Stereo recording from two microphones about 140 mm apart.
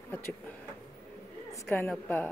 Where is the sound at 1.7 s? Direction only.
15° left (ahead or behind).